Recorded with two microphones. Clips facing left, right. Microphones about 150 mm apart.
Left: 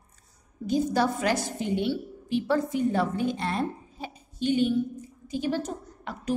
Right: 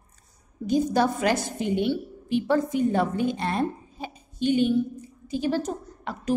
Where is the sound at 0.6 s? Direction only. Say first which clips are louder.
Right 2 dB; 15° right (ahead or behind).